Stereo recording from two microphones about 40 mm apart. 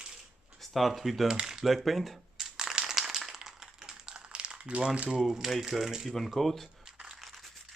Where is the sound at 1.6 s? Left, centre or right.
Centre.